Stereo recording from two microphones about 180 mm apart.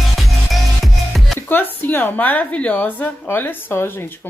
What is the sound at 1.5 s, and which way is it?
A woman's voice, 10° left (ahead or behind).